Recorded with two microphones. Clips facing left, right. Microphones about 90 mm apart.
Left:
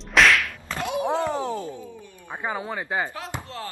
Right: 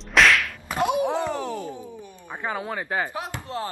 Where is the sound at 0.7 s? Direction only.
20° right (ahead or behind).